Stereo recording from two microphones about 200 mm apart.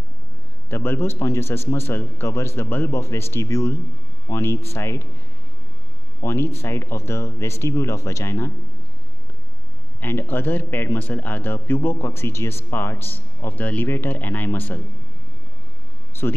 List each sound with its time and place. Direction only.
0.7 s speech: 10° left (ahead or behind)
6.2 s speech: 15° left (ahead or behind)
9.9 s speech: 10° left (ahead or behind)
16.1 s speech: 10° left (ahead or behind)